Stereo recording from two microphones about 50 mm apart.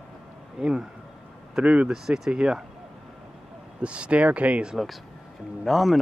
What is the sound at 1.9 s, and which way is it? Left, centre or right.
Speech, centre.